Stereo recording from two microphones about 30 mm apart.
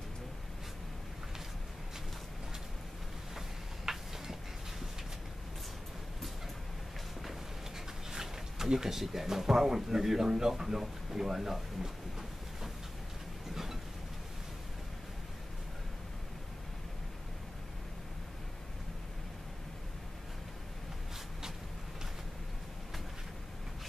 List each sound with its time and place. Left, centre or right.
3.3 s tick-tock: centre
8.1 s a sound: centre
8.7 s speech: centre